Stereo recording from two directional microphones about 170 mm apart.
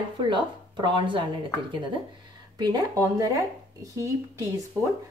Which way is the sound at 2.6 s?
25° right (ahead or behind).